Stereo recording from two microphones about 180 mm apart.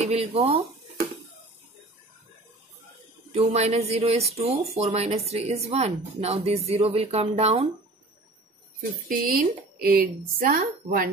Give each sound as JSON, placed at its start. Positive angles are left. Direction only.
{"t": 0.0, "sound": "speech", "side_deg": -35}
{"t": 3.3, "sound": "speech", "side_deg": -35}
{"t": 9.1, "sound": "speech", "side_deg": -50}